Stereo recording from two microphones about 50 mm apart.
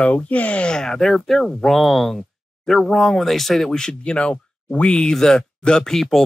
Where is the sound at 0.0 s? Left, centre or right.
Left.